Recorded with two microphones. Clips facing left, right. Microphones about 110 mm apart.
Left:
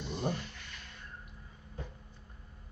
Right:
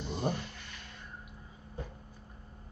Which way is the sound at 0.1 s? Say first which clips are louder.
Right 1 dB; 15° right (ahead or behind).